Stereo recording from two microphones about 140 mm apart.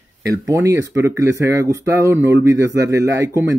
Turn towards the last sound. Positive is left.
turn(degrees=-20)  # may be behind; listen again after turning